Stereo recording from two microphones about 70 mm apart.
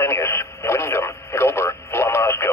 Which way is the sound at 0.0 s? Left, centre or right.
Left.